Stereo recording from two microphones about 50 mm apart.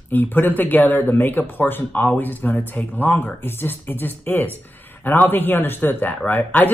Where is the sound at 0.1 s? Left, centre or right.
Left.